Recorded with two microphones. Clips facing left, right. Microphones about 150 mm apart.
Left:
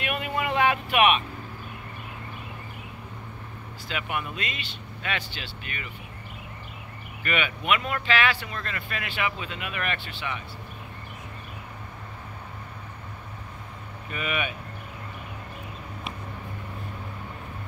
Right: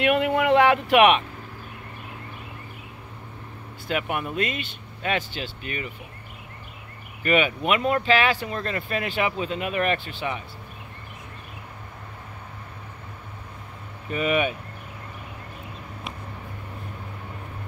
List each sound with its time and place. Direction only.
0.0 s vehicle: 75° right (ahead or behind)
3.8 s speech: 50° right (ahead or behind)
7.2 s speech: 35° right (ahead or behind)
14.1 s speech: 35° right (ahead or behind)